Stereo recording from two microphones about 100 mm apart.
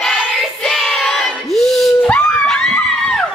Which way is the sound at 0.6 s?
Centre (ahead or behind).